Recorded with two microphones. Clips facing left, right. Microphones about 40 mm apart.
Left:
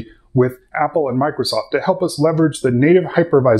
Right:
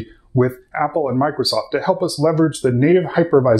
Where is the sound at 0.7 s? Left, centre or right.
Left.